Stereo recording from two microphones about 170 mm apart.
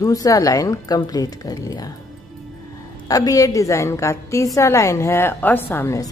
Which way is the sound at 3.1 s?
20° left (ahead or behind).